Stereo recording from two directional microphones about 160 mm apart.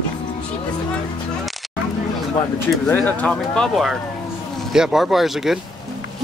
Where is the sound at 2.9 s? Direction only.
10° left (ahead or behind).